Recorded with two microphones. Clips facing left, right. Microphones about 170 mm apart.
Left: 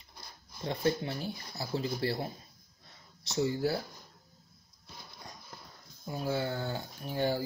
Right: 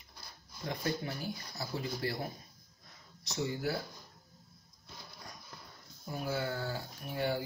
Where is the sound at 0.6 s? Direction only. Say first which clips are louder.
Left 5 dB; 30° left (ahead or behind).